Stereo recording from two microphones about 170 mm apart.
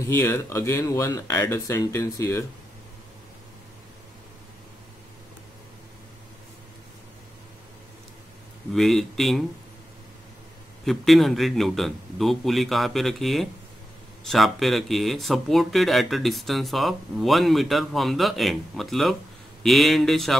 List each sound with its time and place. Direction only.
0.1 s speech: 15° left (ahead or behind)
8.7 s speech: centre (ahead or behind)
10.9 s speech: centre (ahead or behind)